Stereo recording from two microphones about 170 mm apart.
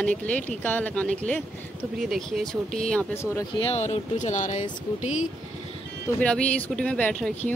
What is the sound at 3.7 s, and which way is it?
Speech, 40° left (ahead or behind).